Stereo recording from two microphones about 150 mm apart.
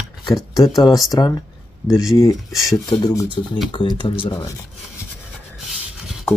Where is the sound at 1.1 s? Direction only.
25° left (ahead or behind).